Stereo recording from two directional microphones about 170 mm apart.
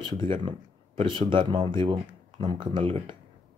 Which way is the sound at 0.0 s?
30° right (ahead or behind).